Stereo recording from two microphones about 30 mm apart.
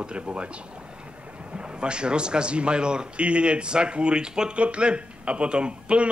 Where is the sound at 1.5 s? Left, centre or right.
Right.